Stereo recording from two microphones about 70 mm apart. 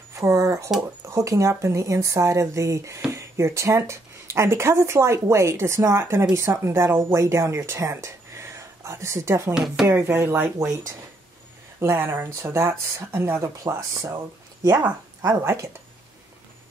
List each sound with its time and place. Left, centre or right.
0.1 s a sound: right
1.0 s a woman's voice: right
7.2 s speech: right
9.5 s speech: centre
9.8 s a woman's voice: right
11.8 s a woman's voice: right
13.4 s a woman's voice: right
15.2 s a woman's voice: right